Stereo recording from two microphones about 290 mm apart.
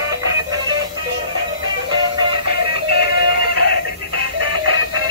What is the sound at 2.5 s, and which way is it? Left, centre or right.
Music, right.